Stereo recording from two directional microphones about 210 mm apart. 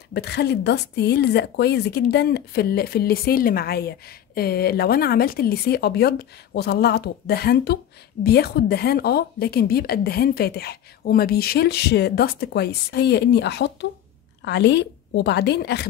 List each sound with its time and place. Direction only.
0.1 s speech: 50° left (ahead or behind)